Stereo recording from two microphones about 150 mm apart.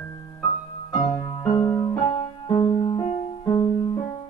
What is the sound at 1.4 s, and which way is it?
Music, 25° left (ahead or behind).